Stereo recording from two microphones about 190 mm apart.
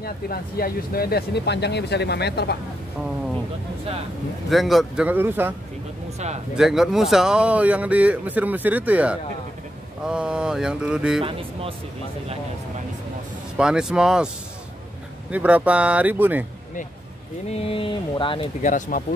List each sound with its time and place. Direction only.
0.0 s speech: 50° left (ahead or behind)
4.5 s speech: centre (ahead or behind)
6.1 s speech: 35° right (ahead or behind)
6.5 s speech: 5° right (ahead or behind)
13.6 s speech: 5° right (ahead or behind)
15.3 s speech: 5° right (ahead or behind)
17.5 s speech: 30° left (ahead or behind)
18.6 s speech: 40° left (ahead or behind)